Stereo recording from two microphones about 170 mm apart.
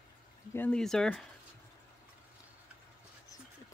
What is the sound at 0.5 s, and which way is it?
Speech, 10° left (ahead or behind).